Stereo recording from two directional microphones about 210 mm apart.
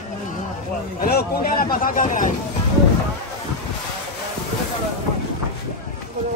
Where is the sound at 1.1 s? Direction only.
45° left (ahead or behind).